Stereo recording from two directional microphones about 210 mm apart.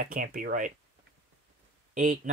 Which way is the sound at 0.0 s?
40° right (ahead or behind).